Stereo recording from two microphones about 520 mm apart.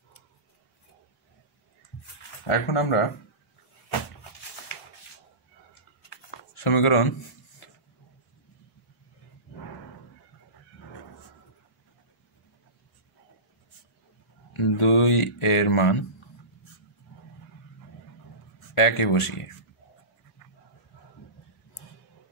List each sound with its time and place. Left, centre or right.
2.4 s speech: left
6.0 s shuffling cards: left
14.6 s a sound: left
18.8 s speech: left